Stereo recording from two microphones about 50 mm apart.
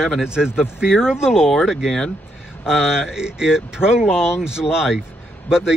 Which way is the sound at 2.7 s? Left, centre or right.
Centre.